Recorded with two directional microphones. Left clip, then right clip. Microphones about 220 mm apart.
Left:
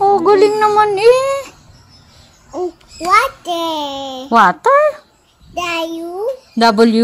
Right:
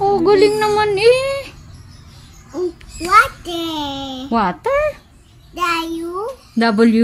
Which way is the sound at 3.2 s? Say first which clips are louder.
Right 1 dB; 20° right (ahead or behind).